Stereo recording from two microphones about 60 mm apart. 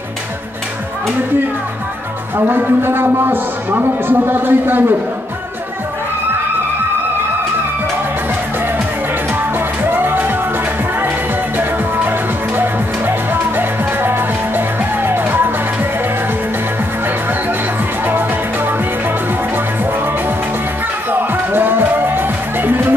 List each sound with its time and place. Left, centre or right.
2.3 s a man's voice: right
9.8 s music: right
12.5 s music: right
21.1 s music: right